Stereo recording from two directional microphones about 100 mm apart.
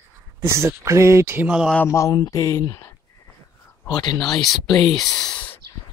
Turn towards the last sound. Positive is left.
turn(degrees=5)  # may be behind; listen again after turning